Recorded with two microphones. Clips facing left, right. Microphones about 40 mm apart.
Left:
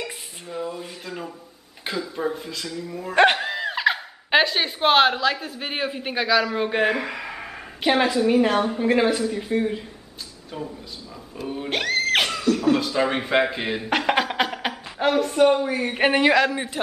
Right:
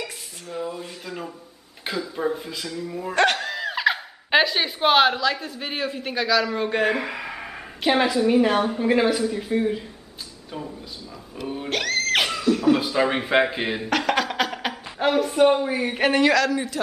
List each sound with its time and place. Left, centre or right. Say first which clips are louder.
0.0 s dishes: left 1 dB; centre
1.9 s a woman's voice: right 1 dB; centre
3.2 s speech: left 3 dB; centre
7.0 s a woman's voice: even; centre
11.4 s a woman's voice: even; centre
11.7 s music: left 1 dB; centre
12.3 s a woman's voice: right 1 dB; centre
13.8 s a woman's voice: left 2 dB; centre
16.0 s a man's voice: left 1 dB; centre